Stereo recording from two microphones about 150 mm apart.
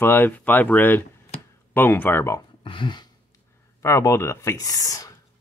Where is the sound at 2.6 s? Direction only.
35° left (ahead or behind).